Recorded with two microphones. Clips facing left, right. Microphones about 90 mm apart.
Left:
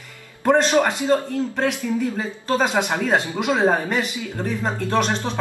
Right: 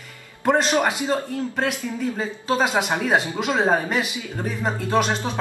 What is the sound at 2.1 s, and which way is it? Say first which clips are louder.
Speech: left 1 dB; 5° right (ahead or behind).